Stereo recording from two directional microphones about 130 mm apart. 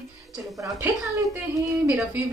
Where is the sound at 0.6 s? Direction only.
25° right (ahead or behind).